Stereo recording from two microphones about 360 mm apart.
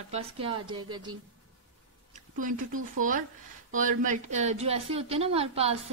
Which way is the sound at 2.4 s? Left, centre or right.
Right.